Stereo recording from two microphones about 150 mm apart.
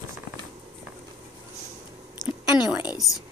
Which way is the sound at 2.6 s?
5° right (ahead or behind).